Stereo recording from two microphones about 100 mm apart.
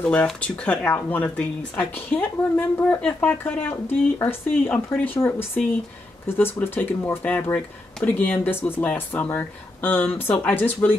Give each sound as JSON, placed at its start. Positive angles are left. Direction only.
{"t": 0.0, "sound": "speech", "side_deg": 10}